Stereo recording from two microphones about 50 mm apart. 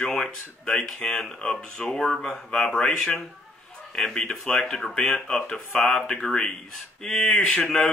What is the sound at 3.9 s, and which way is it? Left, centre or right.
Speech, centre.